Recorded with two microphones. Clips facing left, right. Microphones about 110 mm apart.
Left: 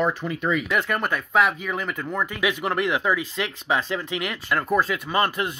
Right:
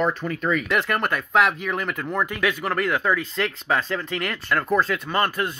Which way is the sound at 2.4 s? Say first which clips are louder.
Left 2 dB; 15° left (ahead or behind).